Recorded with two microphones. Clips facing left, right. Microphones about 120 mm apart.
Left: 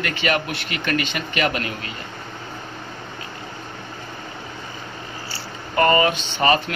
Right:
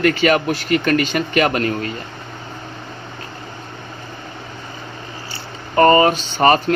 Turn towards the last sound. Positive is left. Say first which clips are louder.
# right 5 dB
turn(degrees=-40)  # may be behind; listen again after turning